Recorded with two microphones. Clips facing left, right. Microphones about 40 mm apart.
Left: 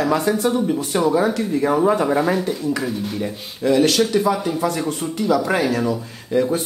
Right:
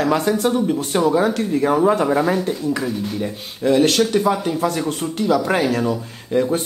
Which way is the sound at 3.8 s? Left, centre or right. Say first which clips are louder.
Right 1 dB; right.